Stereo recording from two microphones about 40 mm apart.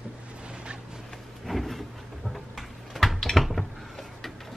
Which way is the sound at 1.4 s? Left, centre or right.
Centre.